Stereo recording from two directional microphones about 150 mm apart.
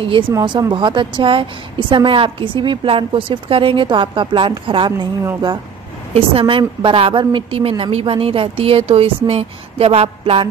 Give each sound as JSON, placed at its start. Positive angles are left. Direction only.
{"t": 0.3, "sound": "a woman's voice", "side_deg": -30}
{"t": 6.1, "sound": "a woman's voice", "side_deg": -35}